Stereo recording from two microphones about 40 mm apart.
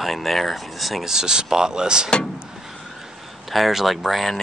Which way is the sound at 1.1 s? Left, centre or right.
Centre.